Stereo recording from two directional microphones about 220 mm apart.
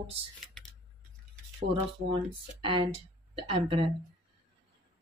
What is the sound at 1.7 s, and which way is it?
Speech, 20° right (ahead or behind).